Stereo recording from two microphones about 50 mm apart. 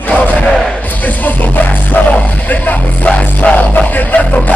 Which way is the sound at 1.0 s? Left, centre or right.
Left.